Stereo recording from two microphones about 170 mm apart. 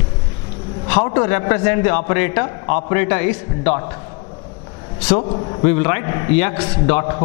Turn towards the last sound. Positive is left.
turn(degrees=15)  # may be behind; listen again after turning